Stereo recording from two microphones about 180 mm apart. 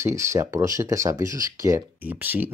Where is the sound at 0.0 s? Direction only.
15° right (ahead or behind).